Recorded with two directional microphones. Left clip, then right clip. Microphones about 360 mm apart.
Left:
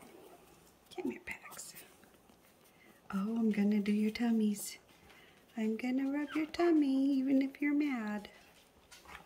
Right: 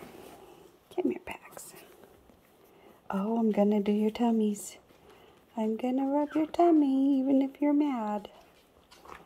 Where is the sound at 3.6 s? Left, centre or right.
Centre.